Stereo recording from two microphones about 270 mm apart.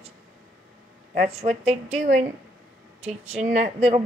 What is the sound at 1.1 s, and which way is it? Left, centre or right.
Speech, right.